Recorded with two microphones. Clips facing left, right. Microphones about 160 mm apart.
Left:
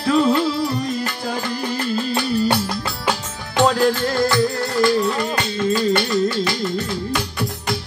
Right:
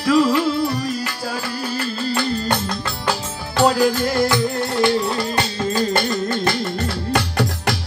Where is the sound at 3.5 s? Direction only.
10° right (ahead or behind).